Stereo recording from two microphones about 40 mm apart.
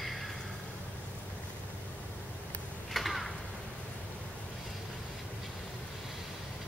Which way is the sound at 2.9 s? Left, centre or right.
Centre.